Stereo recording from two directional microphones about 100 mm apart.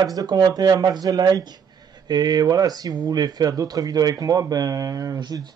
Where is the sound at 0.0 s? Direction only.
40° right (ahead or behind).